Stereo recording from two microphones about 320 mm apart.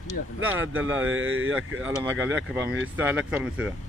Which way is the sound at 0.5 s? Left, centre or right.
Right.